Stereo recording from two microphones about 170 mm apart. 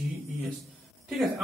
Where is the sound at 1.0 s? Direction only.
Centre (ahead or behind).